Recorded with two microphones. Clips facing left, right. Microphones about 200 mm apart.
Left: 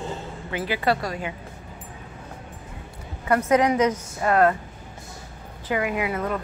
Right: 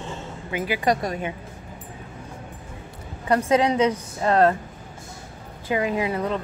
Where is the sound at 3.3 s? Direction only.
30° right (ahead or behind).